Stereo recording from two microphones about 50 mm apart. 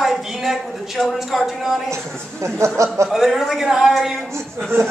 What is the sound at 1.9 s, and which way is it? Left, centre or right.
Speech, right.